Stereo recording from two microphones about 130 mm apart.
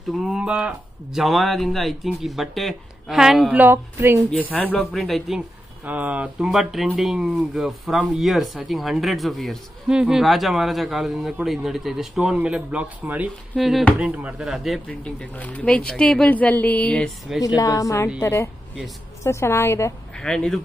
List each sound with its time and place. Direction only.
0.2 s speech: 5° right (ahead or behind)
3.5 s speech: 15° right (ahead or behind)
4.3 s speech: 10° left (ahead or behind)
4.9 s speech: centre (ahead or behind)
5.9 s speech: 10° right (ahead or behind)
13.6 s speech: centre (ahead or behind)
17.6 s a woman's voice: 25° left (ahead or behind)
20.2 s speech: 5° left (ahead or behind)